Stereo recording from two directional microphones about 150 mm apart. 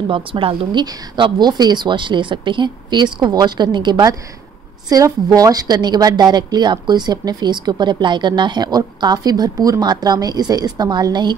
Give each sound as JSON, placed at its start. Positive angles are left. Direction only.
{"t": 0.1, "sound": "a woman's voice", "side_deg": -35}